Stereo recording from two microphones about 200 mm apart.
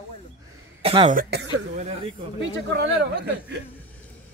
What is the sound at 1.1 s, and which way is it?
Speech, 55° right (ahead or behind).